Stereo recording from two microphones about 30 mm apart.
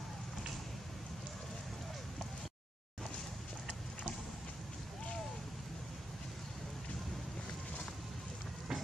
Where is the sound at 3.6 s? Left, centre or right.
Left.